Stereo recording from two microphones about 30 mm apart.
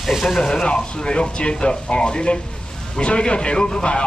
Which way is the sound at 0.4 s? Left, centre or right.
Left.